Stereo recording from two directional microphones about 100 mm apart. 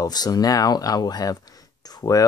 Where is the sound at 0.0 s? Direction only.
40° left (ahead or behind).